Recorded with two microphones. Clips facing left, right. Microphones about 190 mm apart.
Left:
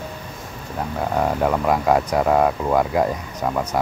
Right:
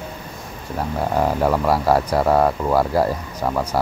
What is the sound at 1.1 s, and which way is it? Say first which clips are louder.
Speech: right 1 dB; 5° right (ahead or behind).